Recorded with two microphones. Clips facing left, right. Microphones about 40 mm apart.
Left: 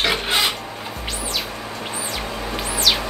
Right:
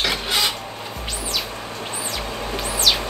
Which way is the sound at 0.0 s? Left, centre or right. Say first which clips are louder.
Left 2 dB; left.